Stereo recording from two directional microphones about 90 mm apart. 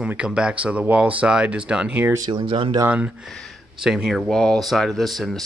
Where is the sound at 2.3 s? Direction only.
70° right (ahead or behind).